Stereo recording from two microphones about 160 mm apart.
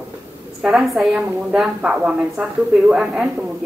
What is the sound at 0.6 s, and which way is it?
A woman's voice, centre (ahead or behind).